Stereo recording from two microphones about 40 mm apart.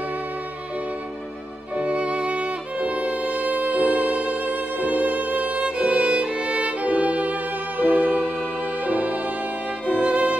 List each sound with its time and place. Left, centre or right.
1.8 s music: right